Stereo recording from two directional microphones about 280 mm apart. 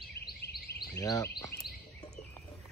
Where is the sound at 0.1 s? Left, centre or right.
Left.